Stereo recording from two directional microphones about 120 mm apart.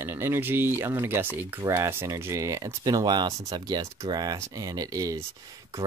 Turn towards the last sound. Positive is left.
turn(degrees=-30)  # may be behind; listen again after turning